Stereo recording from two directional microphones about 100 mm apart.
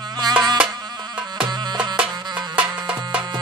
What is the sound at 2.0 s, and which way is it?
Music, 10° right (ahead or behind).